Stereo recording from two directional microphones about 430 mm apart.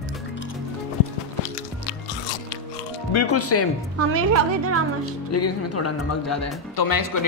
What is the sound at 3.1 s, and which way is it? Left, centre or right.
Speech, left.